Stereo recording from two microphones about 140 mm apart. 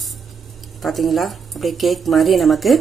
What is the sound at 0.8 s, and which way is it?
A woman's voice, centre (ahead or behind).